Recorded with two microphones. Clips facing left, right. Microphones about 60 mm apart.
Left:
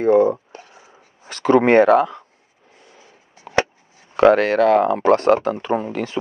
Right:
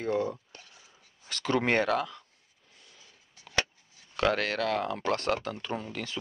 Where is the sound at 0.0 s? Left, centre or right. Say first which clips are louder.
Left 15 dB; left.